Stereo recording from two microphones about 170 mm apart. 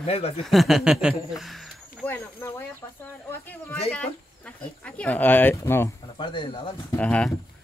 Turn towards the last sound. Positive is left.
turn(degrees=5)  # may be behind; listen again after turning